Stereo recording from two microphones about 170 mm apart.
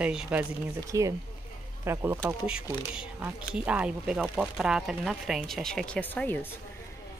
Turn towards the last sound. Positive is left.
turn(degrees=10)  # may be behind; listen again after turning